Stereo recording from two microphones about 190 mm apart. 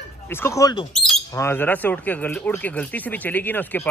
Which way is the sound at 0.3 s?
15° left (ahead or behind).